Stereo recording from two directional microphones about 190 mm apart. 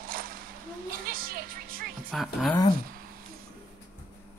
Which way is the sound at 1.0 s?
50° right (ahead or behind).